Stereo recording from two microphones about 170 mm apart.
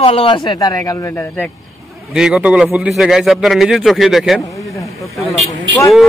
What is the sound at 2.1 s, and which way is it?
A man's voice, 5° right (ahead or behind).